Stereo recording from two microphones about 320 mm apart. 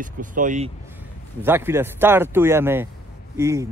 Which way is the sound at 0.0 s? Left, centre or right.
Right.